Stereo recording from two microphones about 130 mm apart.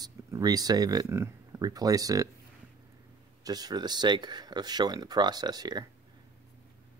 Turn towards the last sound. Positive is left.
turn(degrees=-30)  # may be behind; listen again after turning